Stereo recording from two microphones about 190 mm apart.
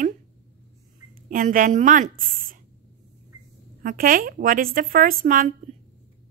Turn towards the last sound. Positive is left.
turn(degrees=-45)  # may be behind; listen again after turning